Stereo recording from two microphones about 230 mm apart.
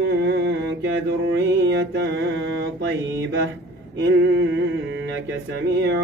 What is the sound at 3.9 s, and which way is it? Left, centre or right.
Mantra, right.